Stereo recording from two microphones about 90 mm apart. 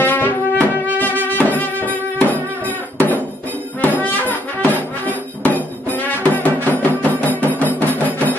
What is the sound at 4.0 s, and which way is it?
Brass instrument, 20° left (ahead or behind).